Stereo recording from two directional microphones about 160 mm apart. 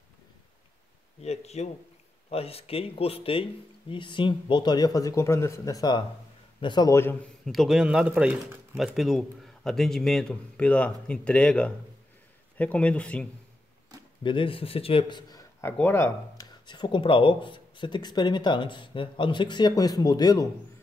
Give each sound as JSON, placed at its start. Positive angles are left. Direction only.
{"t": 1.2, "sound": "a man's voice", "side_deg": 40}
{"t": 7.4, "sound": "speech", "side_deg": 0}
{"t": 14.2, "sound": "a man's voice", "side_deg": 30}
{"t": 16.4, "sound": "speech", "side_deg": 30}